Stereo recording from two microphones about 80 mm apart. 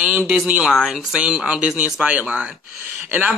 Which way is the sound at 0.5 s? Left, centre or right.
Centre.